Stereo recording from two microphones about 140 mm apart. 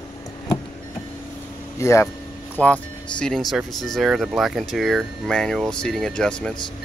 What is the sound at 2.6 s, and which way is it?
Speech, 10° left (ahead or behind).